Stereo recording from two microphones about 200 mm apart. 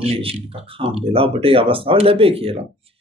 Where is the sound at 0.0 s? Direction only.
30° right (ahead or behind).